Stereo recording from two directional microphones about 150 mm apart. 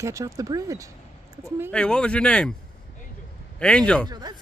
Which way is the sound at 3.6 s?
5° left (ahead or behind).